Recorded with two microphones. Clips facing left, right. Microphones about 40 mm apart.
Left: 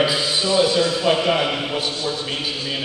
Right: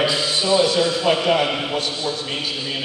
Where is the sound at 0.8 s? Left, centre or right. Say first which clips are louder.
Even; centre.